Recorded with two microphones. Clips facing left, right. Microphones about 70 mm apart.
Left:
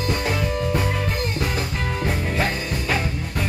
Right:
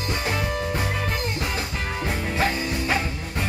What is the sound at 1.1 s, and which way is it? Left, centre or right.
Music, left.